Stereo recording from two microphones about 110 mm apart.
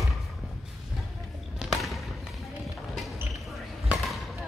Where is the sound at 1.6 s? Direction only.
Centre (ahead or behind).